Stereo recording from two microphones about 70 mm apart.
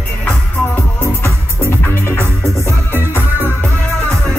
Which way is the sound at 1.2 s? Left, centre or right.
Left.